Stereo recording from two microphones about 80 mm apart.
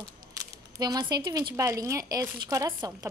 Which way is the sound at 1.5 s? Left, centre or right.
Right.